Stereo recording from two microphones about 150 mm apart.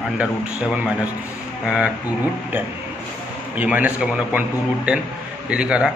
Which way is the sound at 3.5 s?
10° right (ahead or behind).